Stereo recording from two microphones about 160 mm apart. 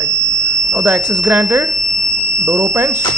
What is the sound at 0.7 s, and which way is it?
A man's voice, 15° right (ahead or behind).